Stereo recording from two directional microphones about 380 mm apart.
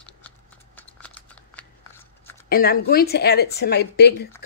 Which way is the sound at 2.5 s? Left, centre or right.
Left.